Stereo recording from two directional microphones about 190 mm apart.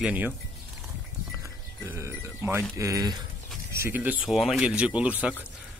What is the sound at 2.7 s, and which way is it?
Speech, 15° right (ahead or behind).